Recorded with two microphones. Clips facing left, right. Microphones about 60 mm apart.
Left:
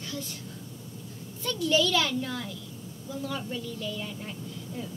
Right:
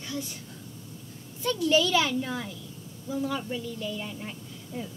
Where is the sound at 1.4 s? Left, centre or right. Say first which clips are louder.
Right 2 dB; centre.